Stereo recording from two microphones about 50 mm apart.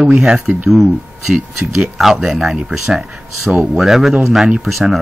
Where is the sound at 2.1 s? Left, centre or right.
Centre.